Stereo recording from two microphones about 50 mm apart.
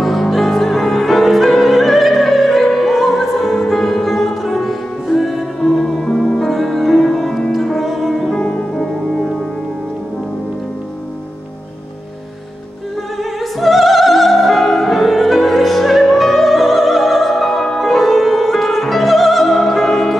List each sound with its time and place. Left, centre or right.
0.0 s opera: centre
8.4 s music: left
8.7 s music: centre
13.2 s opera: centre